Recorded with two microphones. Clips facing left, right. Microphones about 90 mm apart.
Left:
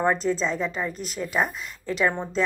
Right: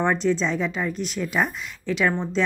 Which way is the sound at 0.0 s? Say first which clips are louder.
Right 1 dB; 5° left (ahead or behind).